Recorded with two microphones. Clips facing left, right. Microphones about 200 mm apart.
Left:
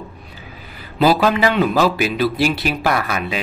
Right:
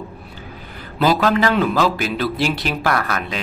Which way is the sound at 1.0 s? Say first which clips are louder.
Left 2 dB; 10° left (ahead or behind).